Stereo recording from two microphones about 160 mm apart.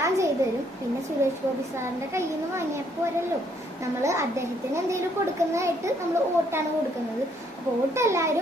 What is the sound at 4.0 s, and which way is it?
Speech, 20° right (ahead or behind).